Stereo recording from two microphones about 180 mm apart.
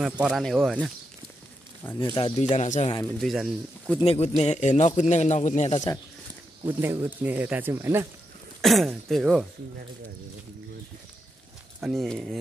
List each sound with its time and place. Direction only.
0.2 s speech: centre (ahead or behind)
2.0 s speech: 30° left (ahead or behind)
2.5 s a man's voice: 40° left (ahead or behind)
3.2 s speech: centre (ahead or behind)
4.0 s a man's voice: 35° left (ahead or behind)
6.6 s speech: 15° right (ahead or behind)
8.5 s speech: centre (ahead or behind)
11.8 s speech: centre (ahead or behind)